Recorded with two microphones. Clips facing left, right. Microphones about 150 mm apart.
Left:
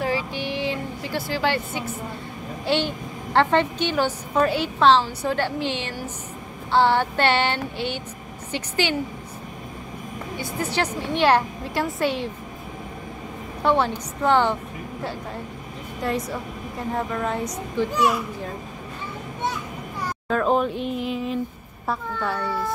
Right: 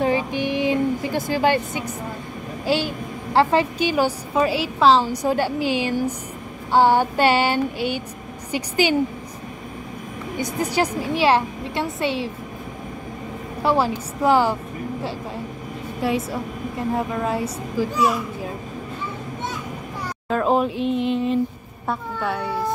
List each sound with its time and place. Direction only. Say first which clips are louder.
0.0 s a sound: right 5 dB; 20° right (ahead or behind)
2.6 s a woman's voice: right 1 dB; 10° right (ahead or behind)
10.3 s a woman's voice: right 4 dB; 15° right (ahead or behind)
13.6 s a woman's voice: right 1 dB; 5° right (ahead or behind)
16.3 s a woman's voice: right 3 dB; 5° right (ahead or behind)
20.2 s a sound: right 2 dB; 5° right (ahead or behind)
21.8 s a woman's voice: right 1 dB; centre (ahead or behind)